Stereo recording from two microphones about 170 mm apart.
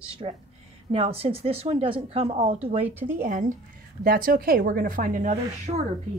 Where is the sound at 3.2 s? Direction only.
50° right (ahead or behind).